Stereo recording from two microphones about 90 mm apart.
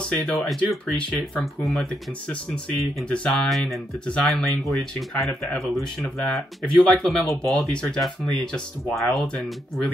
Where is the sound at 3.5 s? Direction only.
Centre (ahead or behind).